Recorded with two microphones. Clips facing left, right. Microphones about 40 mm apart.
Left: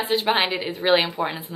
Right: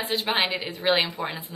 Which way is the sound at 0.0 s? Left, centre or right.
Centre.